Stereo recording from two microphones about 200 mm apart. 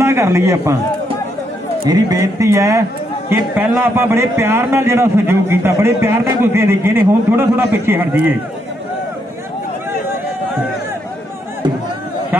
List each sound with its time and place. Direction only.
0.0 s a man's voice: 15° right (ahead or behind)
1.9 s a man's voice: 15° right (ahead or behind)